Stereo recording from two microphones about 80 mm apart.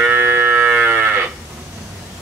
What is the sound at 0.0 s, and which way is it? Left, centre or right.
Moo, right.